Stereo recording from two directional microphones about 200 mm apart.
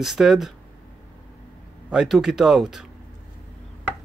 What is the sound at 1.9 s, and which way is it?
Speech, centre (ahead or behind).